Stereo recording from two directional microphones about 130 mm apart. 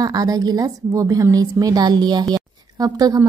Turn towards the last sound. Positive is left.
turn(degrees=-30)  # may be behind; listen again after turning